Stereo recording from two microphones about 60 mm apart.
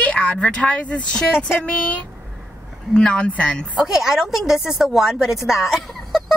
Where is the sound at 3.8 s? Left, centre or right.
Centre.